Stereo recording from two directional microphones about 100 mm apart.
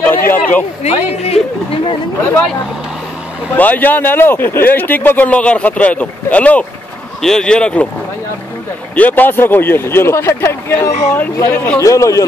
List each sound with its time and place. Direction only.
0.0 s a sound: 20° left (ahead or behind)
0.8 s speech: 90° left
3.5 s speech: 15° left (ahead or behind)
8.9 s speech: 15° left (ahead or behind)
11.5 s speech: 15° left (ahead or behind)
11.8 s a man's voice: 30° left (ahead or behind)